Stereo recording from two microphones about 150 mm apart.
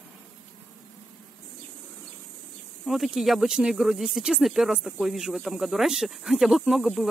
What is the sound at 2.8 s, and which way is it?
Speech, centre (ahead or behind).